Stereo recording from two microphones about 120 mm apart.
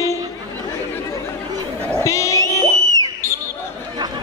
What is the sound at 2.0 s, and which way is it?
Music, 25° left (ahead or behind).